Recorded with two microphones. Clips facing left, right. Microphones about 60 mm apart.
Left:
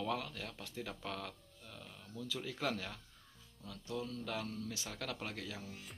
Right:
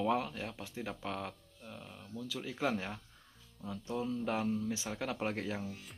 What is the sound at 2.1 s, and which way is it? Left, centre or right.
A man's voice, centre.